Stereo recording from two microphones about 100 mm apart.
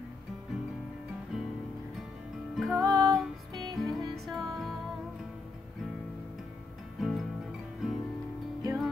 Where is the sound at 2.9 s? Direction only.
35° right (ahead or behind).